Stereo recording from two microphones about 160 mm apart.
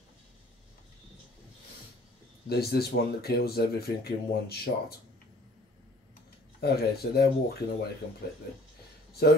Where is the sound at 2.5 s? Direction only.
80° left.